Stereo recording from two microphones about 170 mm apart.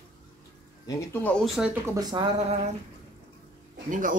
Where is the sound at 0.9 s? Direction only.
15° left (ahead or behind); by 1.7 s centre (ahead or behind).